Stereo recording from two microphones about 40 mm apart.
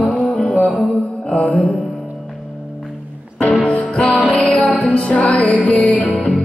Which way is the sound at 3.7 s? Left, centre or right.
Left.